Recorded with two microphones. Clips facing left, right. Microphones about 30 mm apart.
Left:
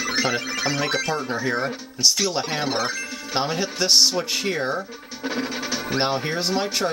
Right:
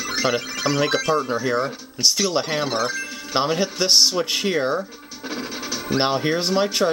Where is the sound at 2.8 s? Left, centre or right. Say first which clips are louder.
Right 2 dB; centre.